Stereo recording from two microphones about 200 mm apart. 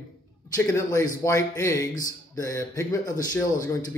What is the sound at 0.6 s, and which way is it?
Speech, 15° left (ahead or behind).